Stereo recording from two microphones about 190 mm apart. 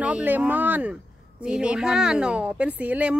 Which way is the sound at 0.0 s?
10° right (ahead or behind).